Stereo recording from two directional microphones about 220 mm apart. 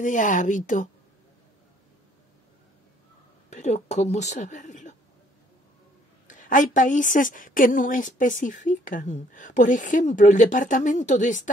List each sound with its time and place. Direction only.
0.0 s a woman's voice: 35° left (ahead or behind)
3.4 s speech: 30° left (ahead or behind)
6.2 s a woman's voice: 35° left (ahead or behind)